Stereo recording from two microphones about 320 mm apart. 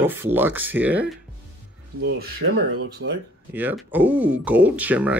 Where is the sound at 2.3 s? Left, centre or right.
Right.